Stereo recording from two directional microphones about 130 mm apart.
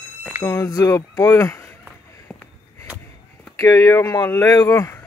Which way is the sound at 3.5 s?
25° left (ahead or behind).